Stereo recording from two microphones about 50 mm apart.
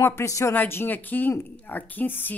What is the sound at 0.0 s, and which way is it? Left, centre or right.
Speech, left.